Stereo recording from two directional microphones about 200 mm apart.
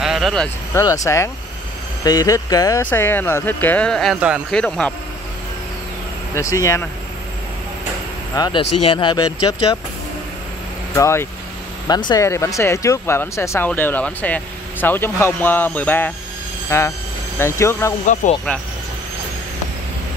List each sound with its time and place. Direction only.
0.0 s a sound: centre (ahead or behind)
0.7 s speech: 15° left (ahead or behind)
6.5 s speech: 15° left (ahead or behind)
8.4 s speech: 25° left (ahead or behind)
11.0 s speech: 15° left (ahead or behind)
18.2 s speech: 40° left (ahead or behind)